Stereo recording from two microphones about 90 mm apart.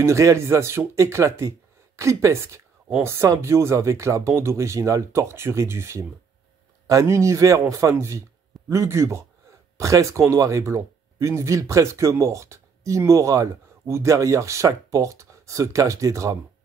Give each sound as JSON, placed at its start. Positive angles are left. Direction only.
{"t": 0.0, "sound": "speech", "side_deg": -35}